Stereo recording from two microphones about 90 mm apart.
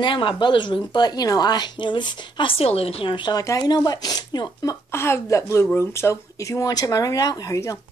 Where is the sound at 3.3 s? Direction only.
45° left (ahead or behind).